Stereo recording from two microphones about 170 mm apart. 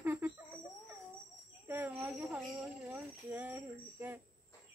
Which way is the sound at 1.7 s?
15° right (ahead or behind).